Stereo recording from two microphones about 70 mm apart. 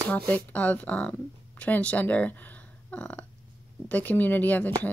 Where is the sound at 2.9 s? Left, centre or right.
Left.